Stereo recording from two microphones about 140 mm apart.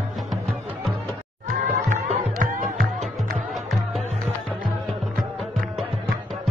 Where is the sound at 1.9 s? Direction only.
80° right.